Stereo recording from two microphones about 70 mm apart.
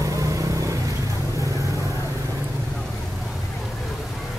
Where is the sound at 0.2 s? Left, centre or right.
Right.